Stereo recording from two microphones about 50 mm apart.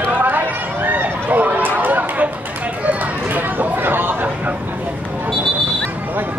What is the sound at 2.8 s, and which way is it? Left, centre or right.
Chatter, right.